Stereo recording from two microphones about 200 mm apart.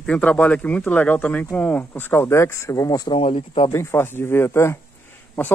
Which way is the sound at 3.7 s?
15° left (ahead or behind).